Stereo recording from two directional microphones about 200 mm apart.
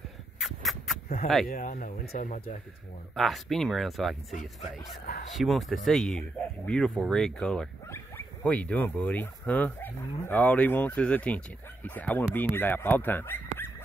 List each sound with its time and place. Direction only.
0.4 s a sound: centre (ahead or behind)
1.2 s speech: centre (ahead or behind)
1.5 s speech: 40° left (ahead or behind)
3.2 s speech: centre (ahead or behind)